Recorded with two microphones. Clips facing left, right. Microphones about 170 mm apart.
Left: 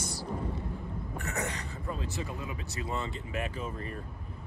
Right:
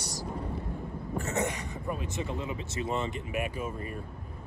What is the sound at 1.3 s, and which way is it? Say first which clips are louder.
Speech: right 4 dB; 20° right (ahead or behind).